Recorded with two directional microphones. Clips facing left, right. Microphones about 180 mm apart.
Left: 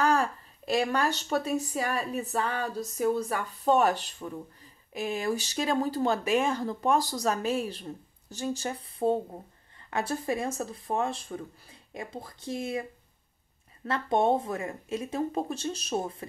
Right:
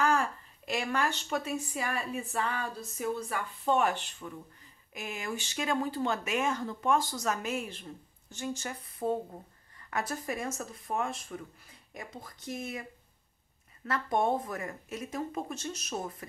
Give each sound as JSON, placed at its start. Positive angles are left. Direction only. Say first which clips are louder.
{"t": 0.0, "sound": "a woman's voice", "louder": "left 3 dB", "side_deg": 35}
{"t": 13.8, "sound": "speech", "louder": "left 4 dB", "side_deg": 25}